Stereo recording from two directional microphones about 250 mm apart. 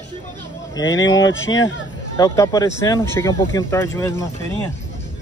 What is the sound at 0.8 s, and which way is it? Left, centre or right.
Speech, left.